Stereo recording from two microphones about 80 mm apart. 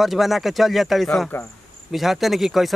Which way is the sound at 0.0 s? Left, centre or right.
Centre.